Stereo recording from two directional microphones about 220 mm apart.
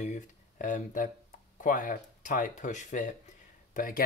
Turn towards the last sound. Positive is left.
turn(degrees=40)  # may be behind; listen again after turning